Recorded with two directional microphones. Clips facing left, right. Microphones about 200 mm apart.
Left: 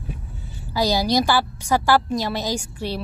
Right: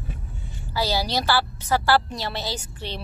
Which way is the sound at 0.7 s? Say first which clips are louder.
Left 5 dB; 15° left (ahead or behind).